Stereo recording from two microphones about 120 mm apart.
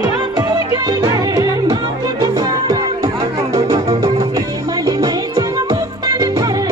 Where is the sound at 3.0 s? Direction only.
30° right (ahead or behind).